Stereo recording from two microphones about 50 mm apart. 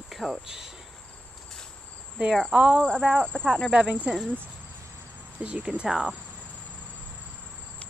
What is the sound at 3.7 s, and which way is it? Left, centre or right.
Speech, right.